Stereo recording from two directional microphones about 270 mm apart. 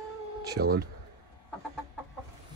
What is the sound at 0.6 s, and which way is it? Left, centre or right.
Speech, right.